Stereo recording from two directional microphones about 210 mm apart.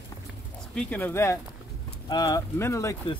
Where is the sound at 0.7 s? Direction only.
10° left (ahead or behind).